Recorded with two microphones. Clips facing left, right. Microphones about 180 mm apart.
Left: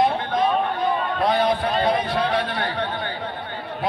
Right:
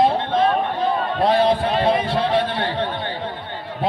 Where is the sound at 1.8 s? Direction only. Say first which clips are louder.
Right 2 dB; 25° right (ahead or behind).